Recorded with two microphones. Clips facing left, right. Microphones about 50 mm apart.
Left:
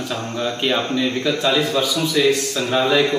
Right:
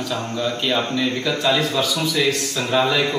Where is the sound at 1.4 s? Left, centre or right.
Centre.